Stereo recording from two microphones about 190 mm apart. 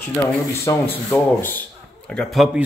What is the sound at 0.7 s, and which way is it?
A man's voice, 10° left (ahead or behind).